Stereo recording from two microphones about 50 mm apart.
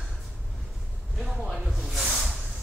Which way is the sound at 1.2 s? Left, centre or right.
Centre.